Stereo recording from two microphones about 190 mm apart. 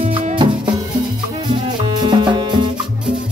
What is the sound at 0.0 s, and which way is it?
Music, 25° right (ahead or behind).